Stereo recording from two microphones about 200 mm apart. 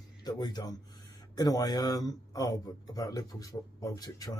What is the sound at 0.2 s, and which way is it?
Speech, 20° left (ahead or behind).